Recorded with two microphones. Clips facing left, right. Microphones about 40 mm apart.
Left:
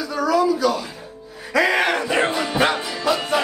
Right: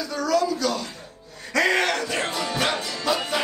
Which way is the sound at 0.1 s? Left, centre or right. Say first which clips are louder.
Left 4 dB; centre.